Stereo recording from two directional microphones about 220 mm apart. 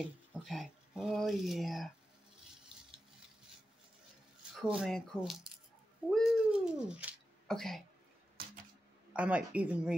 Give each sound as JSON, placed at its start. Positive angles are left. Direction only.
{"t": 0.3, "sound": "speech", "side_deg": 0}
{"t": 4.6, "sound": "speech", "side_deg": 0}
{"t": 9.1, "sound": "speech", "side_deg": -5}